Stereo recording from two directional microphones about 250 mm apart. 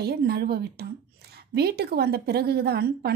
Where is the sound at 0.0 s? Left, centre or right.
Right.